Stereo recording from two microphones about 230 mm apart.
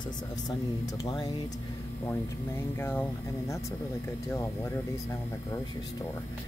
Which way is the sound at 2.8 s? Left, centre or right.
Centre.